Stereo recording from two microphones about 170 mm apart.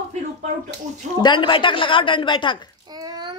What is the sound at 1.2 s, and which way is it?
A woman's voice, 30° left (ahead or behind).